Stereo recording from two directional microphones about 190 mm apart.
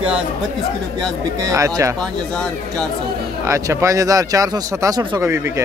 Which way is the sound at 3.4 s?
15° right (ahead or behind).